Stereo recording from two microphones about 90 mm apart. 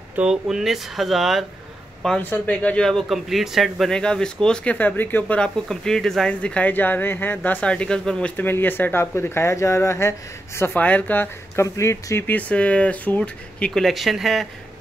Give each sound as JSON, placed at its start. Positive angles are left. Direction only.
{"t": 0.1, "sound": "speech", "side_deg": -10}
{"t": 2.1, "sound": "speech", "side_deg": 20}
{"t": 5.4, "sound": "speech", "side_deg": 5}
{"t": 8.4, "sound": "speech", "side_deg": 20}
{"t": 11.5, "sound": "speech", "side_deg": 35}
{"t": 12.3, "sound": "speech", "side_deg": 15}